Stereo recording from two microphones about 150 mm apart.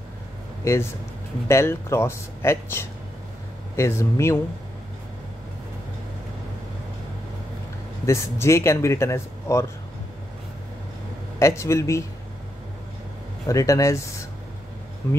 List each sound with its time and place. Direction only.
1.5 s speech: 15° left (ahead or behind)
8.0 s speech: 20° left (ahead or behind)
11.3 s speech: 20° left (ahead or behind)
13.5 s speech: 20° left (ahead or behind)
15.0 s speech: 15° left (ahead or behind)